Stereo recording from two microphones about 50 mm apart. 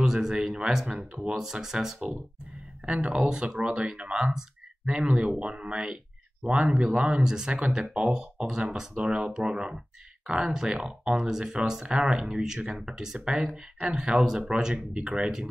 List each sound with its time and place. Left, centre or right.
0.0 s speech: centre
7.2 s speech: centre